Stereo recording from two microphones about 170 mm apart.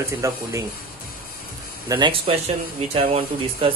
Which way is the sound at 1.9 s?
30° right (ahead or behind).